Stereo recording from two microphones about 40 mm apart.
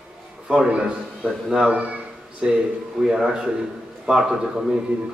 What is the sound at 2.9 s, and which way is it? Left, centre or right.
Speech, centre.